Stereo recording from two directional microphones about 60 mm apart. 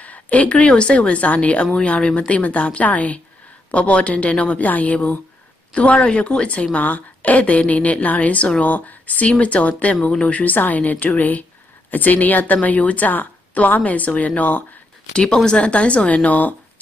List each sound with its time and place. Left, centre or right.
0.0 s a woman's voice: left
15.1 s speech: centre